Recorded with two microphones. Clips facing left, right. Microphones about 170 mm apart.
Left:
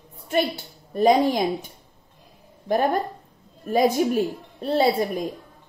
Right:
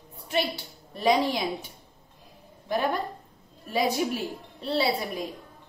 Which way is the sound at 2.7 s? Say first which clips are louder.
Left 5 dB; 50° left (ahead or behind).